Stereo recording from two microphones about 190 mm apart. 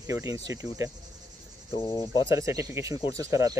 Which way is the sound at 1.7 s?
25° left (ahead or behind).